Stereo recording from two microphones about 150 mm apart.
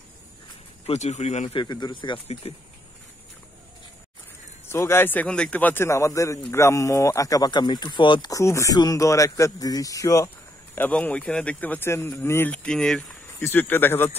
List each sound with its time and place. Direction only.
0.8 s speech: 45° left (ahead or behind)
1.5 s speech: 30° left (ahead or behind)
4.6 s a man's voice: 15° left (ahead or behind)